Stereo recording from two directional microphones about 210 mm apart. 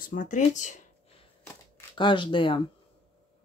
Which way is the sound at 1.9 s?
25° left (ahead or behind).